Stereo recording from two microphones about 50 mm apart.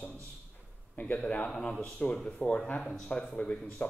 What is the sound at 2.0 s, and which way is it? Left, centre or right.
Speech, left.